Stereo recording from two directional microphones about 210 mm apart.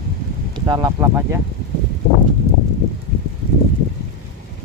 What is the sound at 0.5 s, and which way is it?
Speech, 20° right (ahead or behind).